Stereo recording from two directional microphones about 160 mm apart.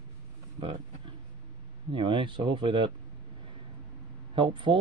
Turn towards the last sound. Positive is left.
turn(degrees=-30)  # may be behind; listen again after turning